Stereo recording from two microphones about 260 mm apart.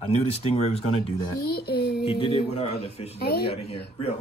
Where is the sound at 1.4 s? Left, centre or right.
Left.